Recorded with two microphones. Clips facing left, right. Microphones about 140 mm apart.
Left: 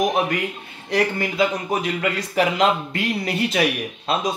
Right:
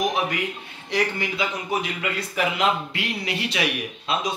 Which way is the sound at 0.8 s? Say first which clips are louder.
Left 4 dB; 45° left (ahead or behind).